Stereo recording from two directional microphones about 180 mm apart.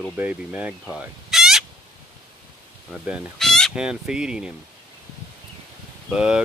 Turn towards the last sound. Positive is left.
turn(degrees=-5)  # may be behind; listen again after turning